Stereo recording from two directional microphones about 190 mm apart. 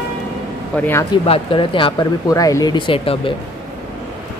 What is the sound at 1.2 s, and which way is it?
Speech, 30° left (ahead or behind).